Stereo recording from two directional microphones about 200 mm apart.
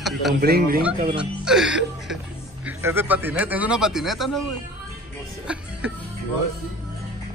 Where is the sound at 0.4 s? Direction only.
50° right (ahead or behind).